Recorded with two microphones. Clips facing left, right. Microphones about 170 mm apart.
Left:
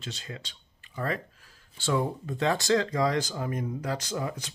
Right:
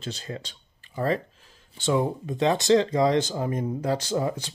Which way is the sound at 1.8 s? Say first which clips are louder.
Right 4 dB; 20° right (ahead or behind).